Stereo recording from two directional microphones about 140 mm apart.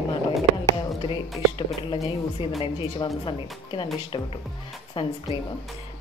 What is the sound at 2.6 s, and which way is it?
Speech, 40° left (ahead or behind).